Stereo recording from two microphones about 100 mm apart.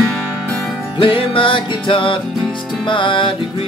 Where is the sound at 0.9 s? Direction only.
60° left (ahead or behind).